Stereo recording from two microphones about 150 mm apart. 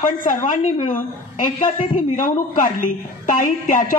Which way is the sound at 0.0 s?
60° left (ahead or behind).